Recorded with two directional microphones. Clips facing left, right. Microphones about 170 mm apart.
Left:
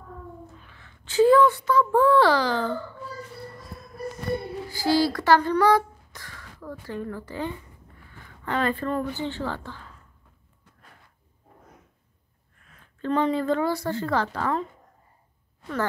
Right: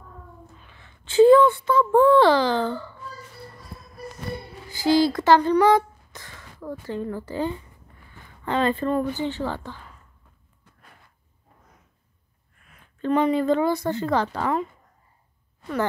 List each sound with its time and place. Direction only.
0.6 s a sound: 20° right (ahead or behind)
4.6 s a woman's voice: 20° right (ahead or behind)
12.6 s a woman's voice: 10° right (ahead or behind)